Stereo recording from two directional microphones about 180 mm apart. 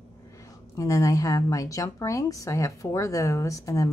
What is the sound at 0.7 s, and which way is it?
A woman's voice, 20° left (ahead or behind).